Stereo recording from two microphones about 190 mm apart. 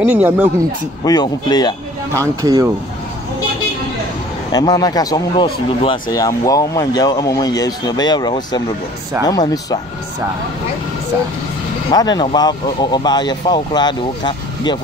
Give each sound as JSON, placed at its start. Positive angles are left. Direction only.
{"t": 0.0, "sound": "speech", "side_deg": -5}
{"t": 1.0, "sound": "speech", "side_deg": 25}
{"t": 2.1, "sound": "speech", "side_deg": -20}
{"t": 4.5, "sound": "speech", "side_deg": 20}
{"t": 11.9, "sound": "speech", "side_deg": 20}